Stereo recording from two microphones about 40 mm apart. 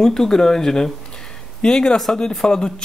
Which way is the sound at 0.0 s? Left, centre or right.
Centre.